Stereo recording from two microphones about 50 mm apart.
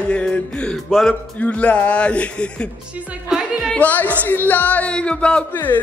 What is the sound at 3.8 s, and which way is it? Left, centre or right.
Speech, left.